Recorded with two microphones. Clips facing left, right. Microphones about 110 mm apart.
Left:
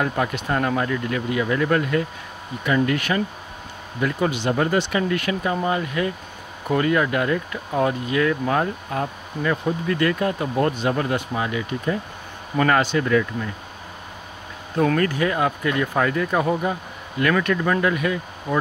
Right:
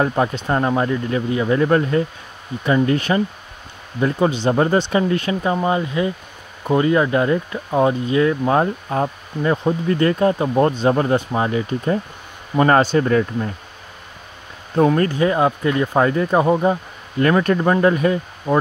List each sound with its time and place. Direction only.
0.0 s speech: 30° right (ahead or behind)
15.0 s speech: 25° right (ahead or behind)